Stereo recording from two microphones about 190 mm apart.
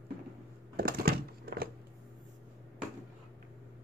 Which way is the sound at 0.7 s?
55° right (ahead or behind).